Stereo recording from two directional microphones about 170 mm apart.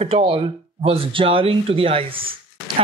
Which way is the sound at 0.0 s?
30° right (ahead or behind).